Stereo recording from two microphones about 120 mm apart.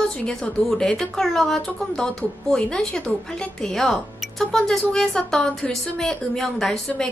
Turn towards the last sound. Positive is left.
turn(degrees=5)  # may be behind; listen again after turning